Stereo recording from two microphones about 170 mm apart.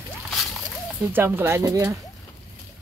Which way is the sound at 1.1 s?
10° right (ahead or behind).